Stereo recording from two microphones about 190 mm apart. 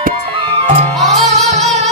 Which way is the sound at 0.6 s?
35° right (ahead or behind).